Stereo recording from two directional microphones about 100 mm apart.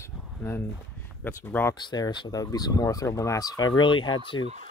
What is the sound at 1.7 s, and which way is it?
Speech, 45° left (ahead or behind).